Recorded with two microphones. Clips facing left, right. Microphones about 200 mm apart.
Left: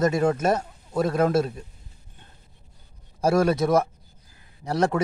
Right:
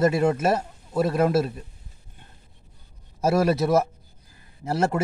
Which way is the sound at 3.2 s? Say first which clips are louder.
Even; 5° right (ahead or behind).